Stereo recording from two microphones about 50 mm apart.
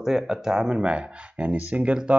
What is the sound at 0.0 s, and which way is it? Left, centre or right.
Speech, centre.